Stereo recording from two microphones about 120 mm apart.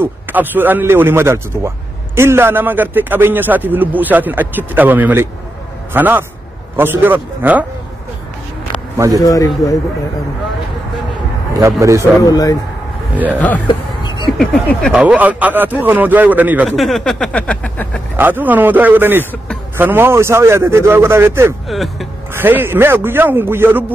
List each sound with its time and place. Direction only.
0.0 s a man's voice: 15° right (ahead or behind)
8.9 s speech: 25° right (ahead or behind)
9.2 s speech: 30° left (ahead or behind)
11.5 s speech: 25° right (ahead or behind)
12.2 s speech: 30° left (ahead or behind)
13.1 s a man's voice: 15° right (ahead or behind)
13.7 s music: 40° left (ahead or behind)
14.4 s speech: 5° left (ahead or behind)
14.9 s a man's voice: 10° right (ahead or behind)
16.6 s speech: centre (ahead or behind)
18.1 s a man's voice: 15° right (ahead or behind)
21.6 s speech: centre (ahead or behind)
22.3 s a man's voice: 15° right (ahead or behind)